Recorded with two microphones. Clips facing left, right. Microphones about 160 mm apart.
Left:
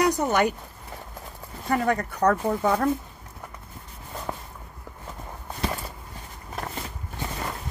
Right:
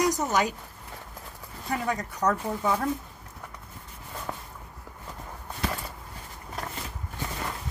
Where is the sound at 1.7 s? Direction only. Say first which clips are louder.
Left 6 dB; 60° left (ahead or behind).